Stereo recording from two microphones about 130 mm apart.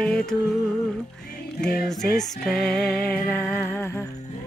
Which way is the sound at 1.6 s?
Centre (ahead or behind).